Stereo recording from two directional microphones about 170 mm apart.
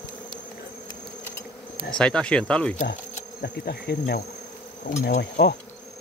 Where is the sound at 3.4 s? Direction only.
70° left (ahead or behind).